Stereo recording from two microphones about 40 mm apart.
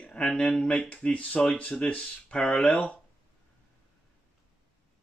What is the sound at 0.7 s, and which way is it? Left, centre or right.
Speech, left.